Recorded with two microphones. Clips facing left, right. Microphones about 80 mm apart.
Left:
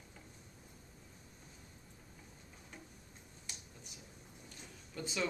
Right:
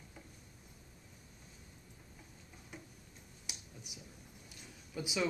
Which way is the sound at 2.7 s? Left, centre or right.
Centre.